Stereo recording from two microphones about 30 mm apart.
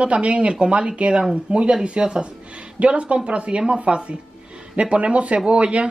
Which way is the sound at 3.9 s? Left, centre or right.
Right.